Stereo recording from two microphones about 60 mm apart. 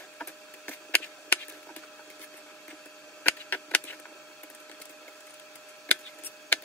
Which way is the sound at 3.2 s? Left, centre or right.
Left.